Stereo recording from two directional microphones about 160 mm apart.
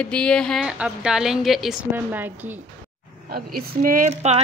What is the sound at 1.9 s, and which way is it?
Speech, 10° right (ahead or behind).